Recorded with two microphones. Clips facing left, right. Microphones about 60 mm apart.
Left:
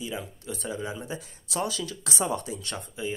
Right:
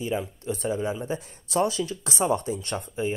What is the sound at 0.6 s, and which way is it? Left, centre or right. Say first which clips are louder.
Speech: right 6 dB; right.